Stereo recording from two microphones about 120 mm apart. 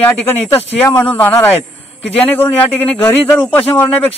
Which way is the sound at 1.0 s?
15° left (ahead or behind).